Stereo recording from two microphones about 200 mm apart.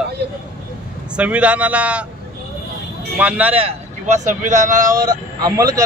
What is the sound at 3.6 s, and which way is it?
Speech, 35° right (ahead or behind).